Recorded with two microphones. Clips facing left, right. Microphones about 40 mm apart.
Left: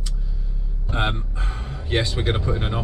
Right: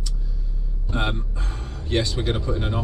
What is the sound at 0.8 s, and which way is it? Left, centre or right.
Speech, left.